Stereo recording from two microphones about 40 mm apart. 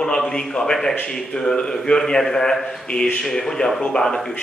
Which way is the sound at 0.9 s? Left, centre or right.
Left.